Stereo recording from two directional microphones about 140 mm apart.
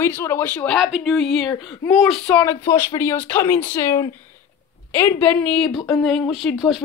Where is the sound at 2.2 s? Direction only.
10° left (ahead or behind).